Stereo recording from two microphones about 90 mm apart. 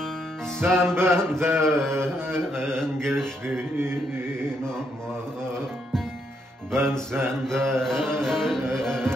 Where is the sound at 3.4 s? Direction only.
25° right (ahead or behind).